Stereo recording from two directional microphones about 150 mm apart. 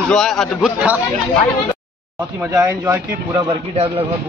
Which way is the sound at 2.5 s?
15° right (ahead or behind).